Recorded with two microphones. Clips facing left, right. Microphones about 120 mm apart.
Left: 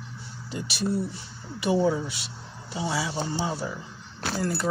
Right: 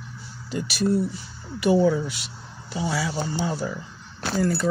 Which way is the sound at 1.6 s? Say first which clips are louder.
Right 4 dB; 25° left (ahead or behind).